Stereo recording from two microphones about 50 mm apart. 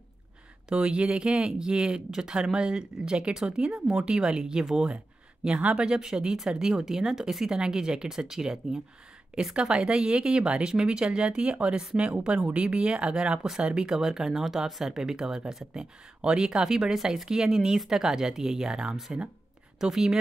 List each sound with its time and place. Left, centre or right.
0.7 s speech: centre
4.8 s speech: right